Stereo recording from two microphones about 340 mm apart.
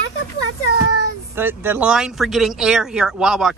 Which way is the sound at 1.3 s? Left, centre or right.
Centre.